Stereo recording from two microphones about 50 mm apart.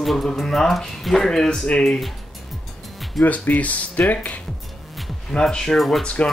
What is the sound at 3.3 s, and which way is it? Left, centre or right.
Speech, left.